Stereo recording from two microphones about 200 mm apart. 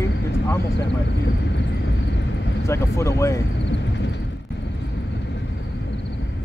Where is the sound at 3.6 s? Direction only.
60° left (ahead or behind).